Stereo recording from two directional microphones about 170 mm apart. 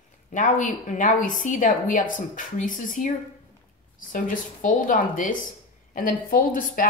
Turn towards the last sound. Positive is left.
turn(degrees=55)  # may be behind; listen again after turning